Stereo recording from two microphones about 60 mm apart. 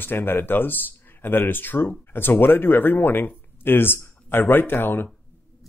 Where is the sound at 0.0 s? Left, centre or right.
Left.